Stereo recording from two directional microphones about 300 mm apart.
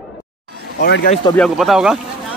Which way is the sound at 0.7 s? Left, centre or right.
Left.